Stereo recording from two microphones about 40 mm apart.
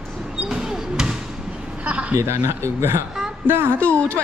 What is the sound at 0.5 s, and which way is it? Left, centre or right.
Basketball bounce, centre.